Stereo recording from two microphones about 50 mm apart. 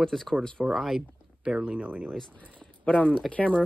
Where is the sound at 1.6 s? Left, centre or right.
Right.